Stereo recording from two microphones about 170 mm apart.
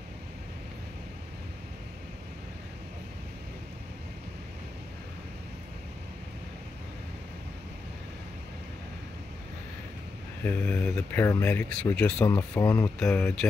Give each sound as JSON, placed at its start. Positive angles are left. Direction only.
{"t": 10.4, "sound": "speech", "side_deg": 10}